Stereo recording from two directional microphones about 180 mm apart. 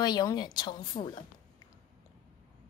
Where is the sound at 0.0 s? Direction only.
20° left (ahead or behind).